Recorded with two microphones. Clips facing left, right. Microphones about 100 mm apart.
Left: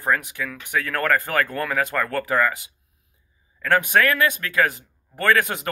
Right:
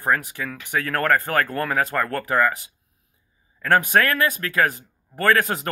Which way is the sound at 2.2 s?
Centre (ahead or behind).